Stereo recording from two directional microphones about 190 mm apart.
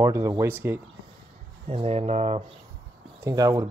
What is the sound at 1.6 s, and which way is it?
Speech, 35° right (ahead or behind).